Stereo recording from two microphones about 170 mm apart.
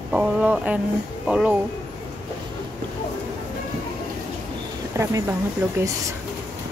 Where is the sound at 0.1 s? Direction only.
5° right (ahead or behind).